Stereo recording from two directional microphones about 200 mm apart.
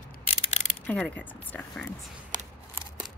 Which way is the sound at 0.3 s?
30° left (ahead or behind).